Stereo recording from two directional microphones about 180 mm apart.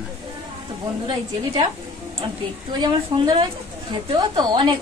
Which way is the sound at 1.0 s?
25° right (ahead or behind).